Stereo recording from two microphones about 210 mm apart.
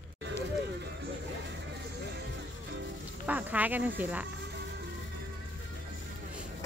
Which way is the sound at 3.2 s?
5° right (ahead or behind).